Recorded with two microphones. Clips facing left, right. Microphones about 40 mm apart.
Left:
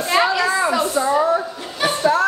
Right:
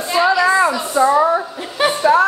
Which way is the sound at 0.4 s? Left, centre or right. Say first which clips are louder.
Right 4 dB; centre.